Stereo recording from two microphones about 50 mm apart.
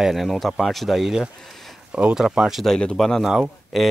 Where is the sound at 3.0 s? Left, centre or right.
Centre.